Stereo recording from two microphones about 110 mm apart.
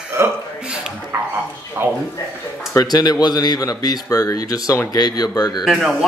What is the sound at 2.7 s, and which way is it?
Speech, 35° left (ahead or behind).